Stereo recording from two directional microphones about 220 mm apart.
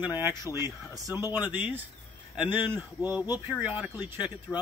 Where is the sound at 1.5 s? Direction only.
10° right (ahead or behind).